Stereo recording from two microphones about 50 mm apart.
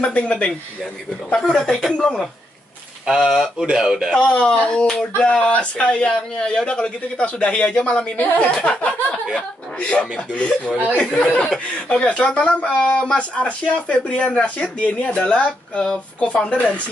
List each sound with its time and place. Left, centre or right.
0.0 s speech: left
3.1 s speech: centre
4.1 s speech: centre